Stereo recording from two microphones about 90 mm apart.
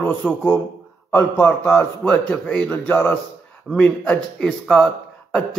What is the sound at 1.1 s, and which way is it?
Speech, 25° left (ahead or behind).